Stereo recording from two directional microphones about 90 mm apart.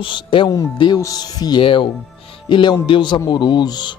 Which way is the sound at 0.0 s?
70° left (ahead or behind).